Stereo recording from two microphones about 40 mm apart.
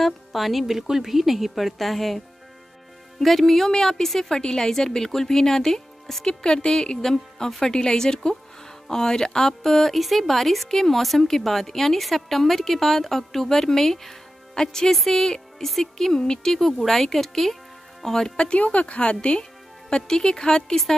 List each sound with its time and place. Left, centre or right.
0.0 s speech: centre
6.2 s speech: left
18.5 s speech: left; by 20.8 s centre